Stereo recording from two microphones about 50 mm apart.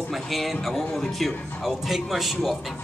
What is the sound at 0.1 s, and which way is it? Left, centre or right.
Speech, centre.